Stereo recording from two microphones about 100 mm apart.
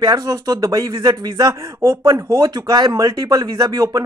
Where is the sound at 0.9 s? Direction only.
55° right (ahead or behind).